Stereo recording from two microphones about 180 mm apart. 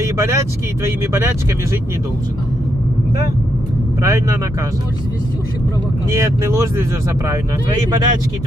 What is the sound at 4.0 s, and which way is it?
Speech, 15° right (ahead or behind).